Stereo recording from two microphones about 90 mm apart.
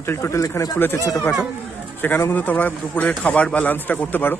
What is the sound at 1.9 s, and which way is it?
A man's voice, 25° left (ahead or behind).